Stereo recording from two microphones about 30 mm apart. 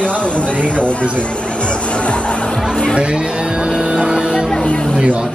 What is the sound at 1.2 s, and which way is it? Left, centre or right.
Chatter, left.